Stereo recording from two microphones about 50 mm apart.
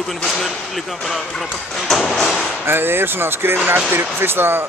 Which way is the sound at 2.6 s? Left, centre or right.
Right.